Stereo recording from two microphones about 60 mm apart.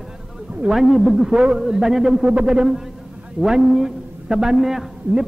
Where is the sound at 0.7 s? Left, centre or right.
Centre.